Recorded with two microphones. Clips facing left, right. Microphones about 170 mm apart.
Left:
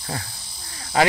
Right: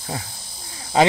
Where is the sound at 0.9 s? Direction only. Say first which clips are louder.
Right 3 dB; 25° right (ahead or behind).